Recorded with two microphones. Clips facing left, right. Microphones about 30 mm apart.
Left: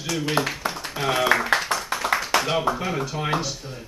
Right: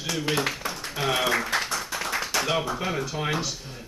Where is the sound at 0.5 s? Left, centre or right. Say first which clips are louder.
Left 4 dB; centre.